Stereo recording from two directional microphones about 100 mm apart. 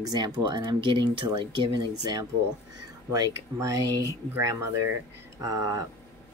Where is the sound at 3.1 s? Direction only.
35° right (ahead or behind).